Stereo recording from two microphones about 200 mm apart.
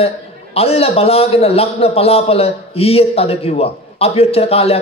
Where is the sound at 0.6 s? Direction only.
30° left (ahead or behind).